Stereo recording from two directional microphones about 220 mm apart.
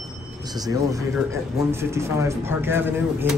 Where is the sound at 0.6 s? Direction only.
15° right (ahead or behind).